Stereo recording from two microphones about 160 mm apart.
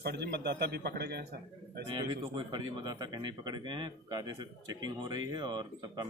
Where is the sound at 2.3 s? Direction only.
25° right (ahead or behind).